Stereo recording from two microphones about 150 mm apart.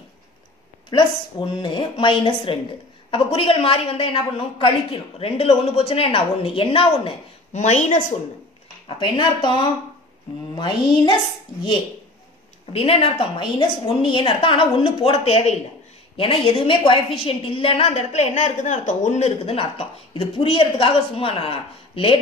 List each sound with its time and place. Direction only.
0.8 s a woman's voice: 30° left (ahead or behind)
7.5 s a woman's voice: 50° left (ahead or behind)
8.8 s a woman's voice: 35° left (ahead or behind)
10.5 s a sound: 30° left (ahead or behind)
12.7 s a woman's voice: 40° left (ahead or behind)